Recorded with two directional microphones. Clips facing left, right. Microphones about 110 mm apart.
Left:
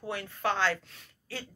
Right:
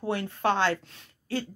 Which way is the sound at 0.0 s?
30° right (ahead or behind).